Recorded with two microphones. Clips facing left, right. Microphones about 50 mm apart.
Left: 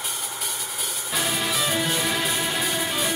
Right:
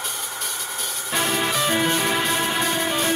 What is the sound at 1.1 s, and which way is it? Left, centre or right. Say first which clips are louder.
Music: right 4 dB; centre.